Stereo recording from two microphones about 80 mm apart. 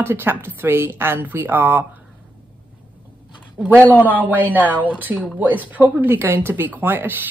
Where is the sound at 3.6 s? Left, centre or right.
Right.